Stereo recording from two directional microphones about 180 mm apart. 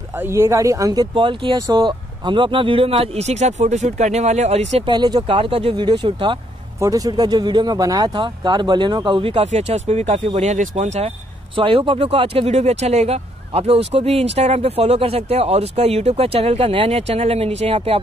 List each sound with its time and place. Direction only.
0.2 s speech: 15° right (ahead or behind); by 11.1 s 40° right (ahead or behind)
11.5 s speech: 30° right (ahead or behind)